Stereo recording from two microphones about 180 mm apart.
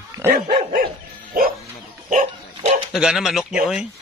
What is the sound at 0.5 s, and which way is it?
Dog, 30° right (ahead or behind).